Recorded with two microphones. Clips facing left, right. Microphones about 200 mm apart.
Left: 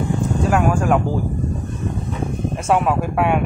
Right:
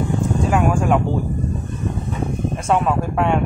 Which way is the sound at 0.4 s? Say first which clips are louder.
Left 1 dB; centre (ahead or behind).